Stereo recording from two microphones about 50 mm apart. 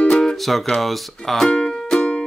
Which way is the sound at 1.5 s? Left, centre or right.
Centre.